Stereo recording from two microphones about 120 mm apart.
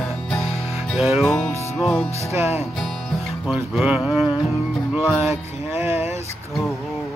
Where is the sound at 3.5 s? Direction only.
5° right (ahead or behind).